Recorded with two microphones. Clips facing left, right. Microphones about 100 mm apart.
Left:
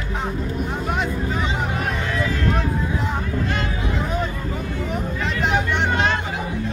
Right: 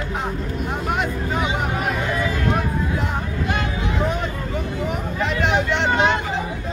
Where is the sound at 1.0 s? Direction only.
5° right (ahead or behind).